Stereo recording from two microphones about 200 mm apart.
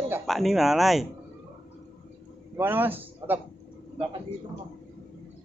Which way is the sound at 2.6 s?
10° right (ahead or behind).